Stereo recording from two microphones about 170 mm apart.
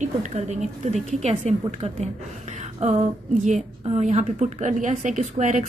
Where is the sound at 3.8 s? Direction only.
40° right (ahead or behind).